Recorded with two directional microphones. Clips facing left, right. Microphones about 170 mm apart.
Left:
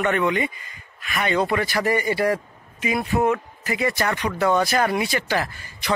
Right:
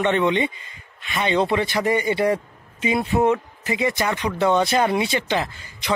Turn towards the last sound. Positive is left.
turn(degrees=-20)  # may be behind; listen again after turning